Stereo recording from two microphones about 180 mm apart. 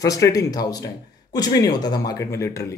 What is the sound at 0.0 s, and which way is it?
Speech, 20° left (ahead or behind).